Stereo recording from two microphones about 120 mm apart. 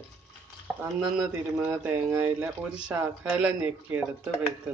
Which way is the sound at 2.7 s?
10° right (ahead or behind).